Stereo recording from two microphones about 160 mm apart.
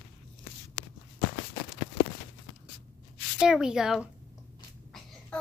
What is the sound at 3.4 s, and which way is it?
Speech, 5° right (ahead or behind).